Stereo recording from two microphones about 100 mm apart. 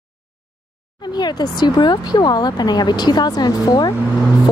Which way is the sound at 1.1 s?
45° left (ahead or behind).